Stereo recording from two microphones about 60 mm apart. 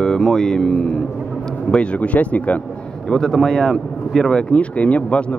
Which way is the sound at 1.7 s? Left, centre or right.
Left.